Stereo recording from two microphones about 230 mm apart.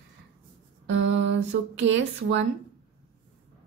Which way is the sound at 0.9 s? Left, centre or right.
Right.